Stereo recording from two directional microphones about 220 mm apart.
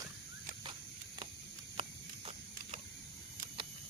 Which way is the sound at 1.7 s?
25° right (ahead or behind).